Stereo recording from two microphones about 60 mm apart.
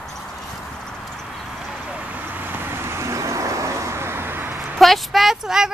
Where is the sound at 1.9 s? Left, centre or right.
Right.